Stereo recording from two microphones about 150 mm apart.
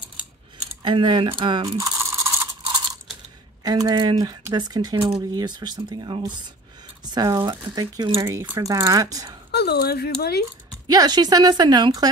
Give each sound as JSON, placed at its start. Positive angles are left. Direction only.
{"t": 0.8, "sound": "ratchet", "side_deg": -30}
{"t": 2.6, "sound": "crunch", "side_deg": -30}
{"t": 3.6, "sound": "speech", "side_deg": -25}
{"t": 9.5, "sound": "speech", "side_deg": 90}
{"t": 10.9, "sound": "speech", "side_deg": -25}